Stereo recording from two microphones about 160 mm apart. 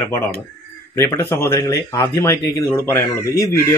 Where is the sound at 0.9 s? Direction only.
15° left (ahead or behind).